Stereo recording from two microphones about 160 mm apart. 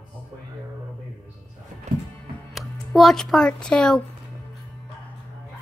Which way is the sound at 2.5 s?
Centre (ahead or behind).